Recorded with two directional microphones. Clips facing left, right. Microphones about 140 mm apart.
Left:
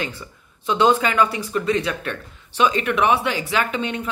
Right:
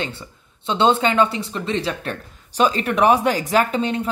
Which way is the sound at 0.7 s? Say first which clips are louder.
Even; 30° right (ahead or behind).